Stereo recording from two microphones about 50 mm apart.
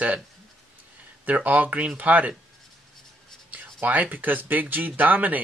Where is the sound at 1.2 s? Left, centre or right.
Right.